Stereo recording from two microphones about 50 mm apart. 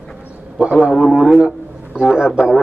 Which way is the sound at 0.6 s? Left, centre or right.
Centre.